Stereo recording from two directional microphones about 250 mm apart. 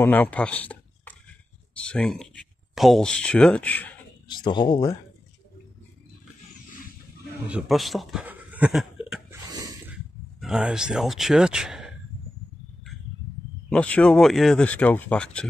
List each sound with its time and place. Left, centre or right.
0.0 s speech: centre
4.5 s speech: centre
7.4 s speech: centre
9.5 s a sound: centre
10.4 s speech: centre
13.7 s speech: centre